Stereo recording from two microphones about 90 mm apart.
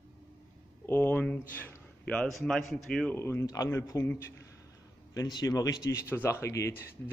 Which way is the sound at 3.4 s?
40° left (ahead or behind).